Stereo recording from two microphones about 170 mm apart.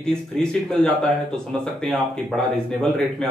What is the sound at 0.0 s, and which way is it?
Speech, 5° left (ahead or behind).